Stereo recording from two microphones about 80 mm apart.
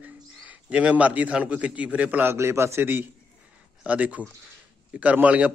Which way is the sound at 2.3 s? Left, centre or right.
Right.